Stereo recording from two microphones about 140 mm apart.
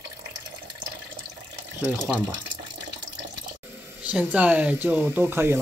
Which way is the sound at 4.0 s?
10° right (ahead or behind).